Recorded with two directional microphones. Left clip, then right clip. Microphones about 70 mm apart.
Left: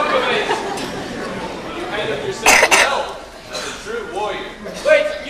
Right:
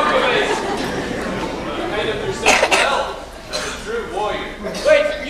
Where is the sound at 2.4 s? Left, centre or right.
Left.